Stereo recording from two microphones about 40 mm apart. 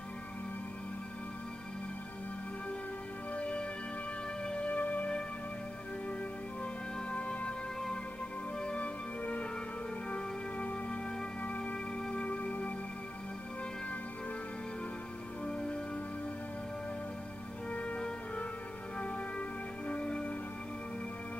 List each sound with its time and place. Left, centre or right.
3.3 s music: left
4.6 s music: left
6.6 s music: left
8.7 s music: left
15.4 s music: left
17.7 s music: left